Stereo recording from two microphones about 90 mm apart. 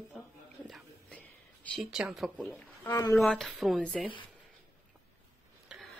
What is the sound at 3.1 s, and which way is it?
Speech, centre (ahead or behind).